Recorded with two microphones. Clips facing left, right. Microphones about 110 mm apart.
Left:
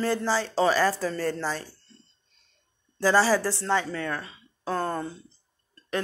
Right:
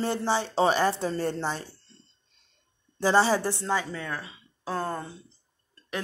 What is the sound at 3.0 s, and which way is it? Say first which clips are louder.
A woman's voice: left 1 dB; 25° right (ahead or behind).